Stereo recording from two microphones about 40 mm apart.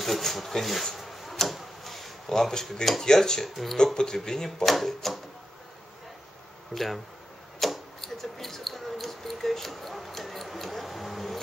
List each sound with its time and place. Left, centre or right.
0.0 s speech: centre
0.9 s a sound: centre
2.3 s speech: centre
6.7 s speech: centre
7.6 s tick-tock: centre